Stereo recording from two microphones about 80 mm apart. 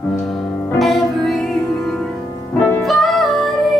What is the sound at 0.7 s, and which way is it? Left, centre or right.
Music, centre.